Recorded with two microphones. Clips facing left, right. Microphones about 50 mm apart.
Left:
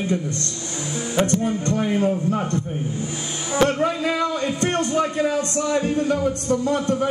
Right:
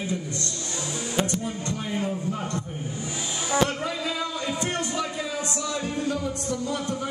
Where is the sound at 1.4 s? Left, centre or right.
Left.